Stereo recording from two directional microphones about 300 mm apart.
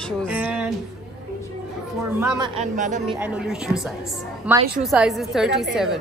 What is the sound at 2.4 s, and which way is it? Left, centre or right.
Speech, right.